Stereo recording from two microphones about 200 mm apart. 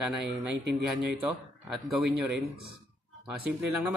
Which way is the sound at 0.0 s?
5° right (ahead or behind).